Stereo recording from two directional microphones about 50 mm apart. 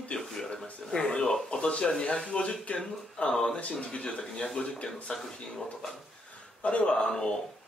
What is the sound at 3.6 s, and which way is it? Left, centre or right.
Speech, left.